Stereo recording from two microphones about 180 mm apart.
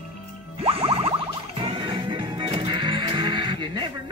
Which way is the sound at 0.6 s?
30° right (ahead or behind).